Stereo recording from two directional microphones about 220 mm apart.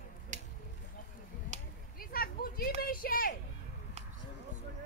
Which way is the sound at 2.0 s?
40° left (ahead or behind).